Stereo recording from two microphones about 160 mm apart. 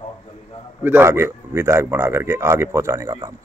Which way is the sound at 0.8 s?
15° right (ahead or behind).